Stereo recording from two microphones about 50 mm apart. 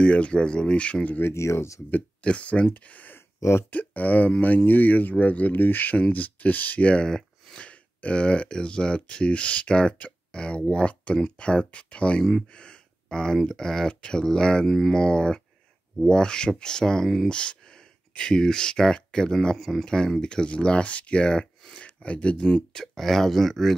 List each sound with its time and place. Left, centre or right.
0.0 s speech: left
1.3 s speech: left
2.2 s speech: left
12.2 s speech: centre
12.5 s speech: centre
14.7 s speech: centre
15.0 s speech: centre